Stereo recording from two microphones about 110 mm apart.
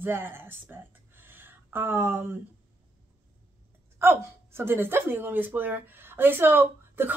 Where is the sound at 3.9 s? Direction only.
20° right (ahead or behind).